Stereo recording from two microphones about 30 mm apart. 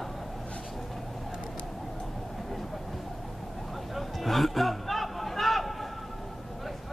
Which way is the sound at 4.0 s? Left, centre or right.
Centre.